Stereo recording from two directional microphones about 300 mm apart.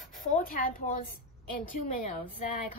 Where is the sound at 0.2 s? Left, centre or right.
Left.